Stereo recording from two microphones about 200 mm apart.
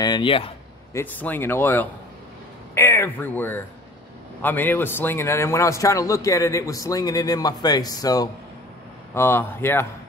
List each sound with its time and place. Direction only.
0.0 s speech: 25° left (ahead or behind)
0.9 s a man's voice: 10° left (ahead or behind)